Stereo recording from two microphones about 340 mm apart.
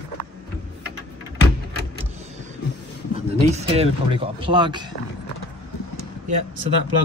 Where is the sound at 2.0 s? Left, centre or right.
Centre.